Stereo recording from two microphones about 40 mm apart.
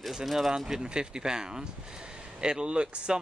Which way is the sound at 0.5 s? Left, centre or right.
Centre.